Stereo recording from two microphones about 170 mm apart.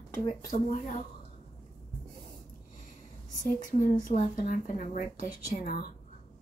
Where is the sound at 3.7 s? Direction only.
50° left (ahead or behind).